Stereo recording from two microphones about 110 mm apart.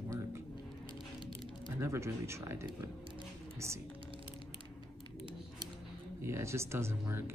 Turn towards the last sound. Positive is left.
turn(degrees=-20)  # may be behind; listen again after turning